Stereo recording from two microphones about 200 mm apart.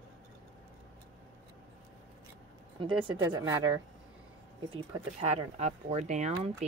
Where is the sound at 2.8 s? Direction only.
25° right (ahead or behind).